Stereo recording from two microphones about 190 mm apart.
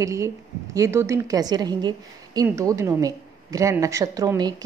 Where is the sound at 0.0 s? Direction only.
15° right (ahead or behind).